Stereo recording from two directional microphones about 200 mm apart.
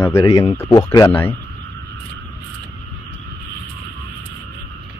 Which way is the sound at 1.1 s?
10° left (ahead or behind).